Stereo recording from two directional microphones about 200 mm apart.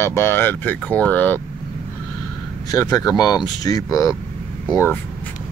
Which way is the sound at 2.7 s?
20° left (ahead or behind).